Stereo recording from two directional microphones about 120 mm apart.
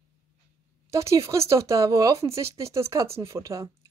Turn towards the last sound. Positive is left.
turn(degrees=-25)  # may be behind; listen again after turning